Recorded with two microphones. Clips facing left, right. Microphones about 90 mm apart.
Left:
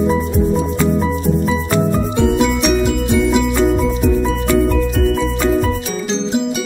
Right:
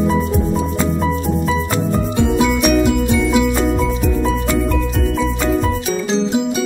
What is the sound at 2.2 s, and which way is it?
Music, centre (ahead or behind).